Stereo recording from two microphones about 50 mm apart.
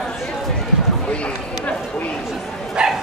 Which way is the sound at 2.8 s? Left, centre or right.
Centre.